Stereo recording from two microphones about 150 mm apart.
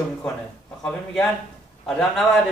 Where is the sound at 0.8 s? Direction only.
5° left (ahead or behind).